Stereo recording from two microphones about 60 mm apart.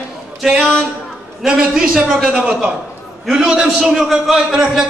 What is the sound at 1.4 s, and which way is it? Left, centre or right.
A man's voice, centre.